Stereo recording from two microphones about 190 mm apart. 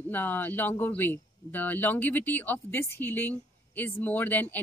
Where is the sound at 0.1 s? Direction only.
10° left (ahead or behind).